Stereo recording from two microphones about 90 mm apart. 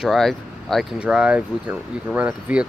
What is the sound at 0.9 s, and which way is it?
Speech, 10° right (ahead or behind).